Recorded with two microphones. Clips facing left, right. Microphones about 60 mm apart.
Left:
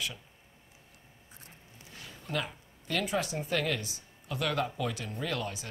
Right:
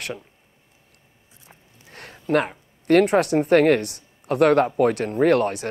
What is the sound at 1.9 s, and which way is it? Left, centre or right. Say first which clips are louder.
Speech: right 16 dB; right.